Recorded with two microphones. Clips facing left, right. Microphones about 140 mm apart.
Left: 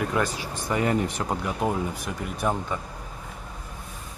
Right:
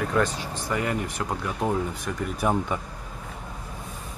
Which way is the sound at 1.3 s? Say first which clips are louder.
Even; 15° left (ahead or behind).